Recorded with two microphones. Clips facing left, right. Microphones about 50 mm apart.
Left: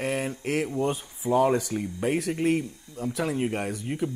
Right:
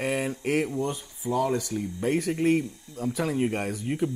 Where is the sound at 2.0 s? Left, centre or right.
Centre.